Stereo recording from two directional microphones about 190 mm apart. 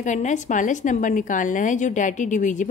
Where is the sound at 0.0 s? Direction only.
40° left (ahead or behind).